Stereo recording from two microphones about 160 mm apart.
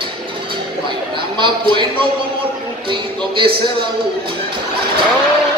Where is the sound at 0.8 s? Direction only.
30° right (ahead or behind).